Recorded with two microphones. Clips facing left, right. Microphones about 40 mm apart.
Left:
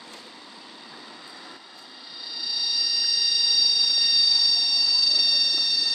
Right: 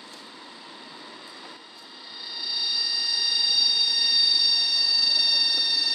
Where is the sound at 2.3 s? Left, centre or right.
Centre.